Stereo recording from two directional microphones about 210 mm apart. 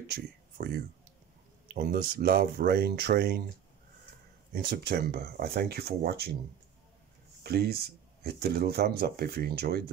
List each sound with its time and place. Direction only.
0.0 s speech: 50° right (ahead or behind)
4.5 s speech: 50° right (ahead or behind)
7.4 s speech: 50° right (ahead or behind)